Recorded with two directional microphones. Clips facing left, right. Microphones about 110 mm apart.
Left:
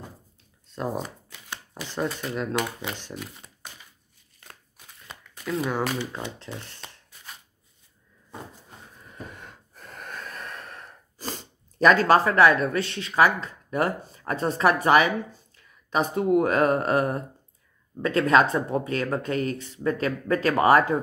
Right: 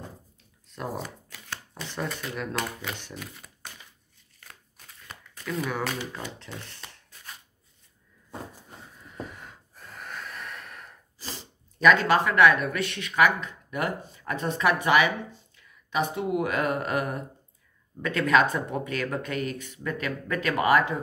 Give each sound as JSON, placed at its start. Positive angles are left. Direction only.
{"t": 0.7, "sound": "shuffling cards", "side_deg": 20}
{"t": 2.2, "sound": "speech", "side_deg": 25}
{"t": 5.5, "sound": "speech", "side_deg": 25}
{"t": 9.4, "sound": "gasp", "side_deg": 50}
{"t": 17.9, "sound": "speech", "side_deg": 30}